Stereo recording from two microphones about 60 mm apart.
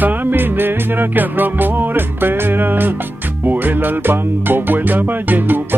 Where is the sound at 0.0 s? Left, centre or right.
Right.